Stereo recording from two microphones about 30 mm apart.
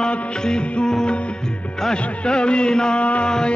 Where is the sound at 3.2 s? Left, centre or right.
Left.